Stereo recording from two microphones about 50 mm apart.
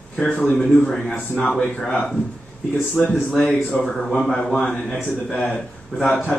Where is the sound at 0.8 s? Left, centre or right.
Centre.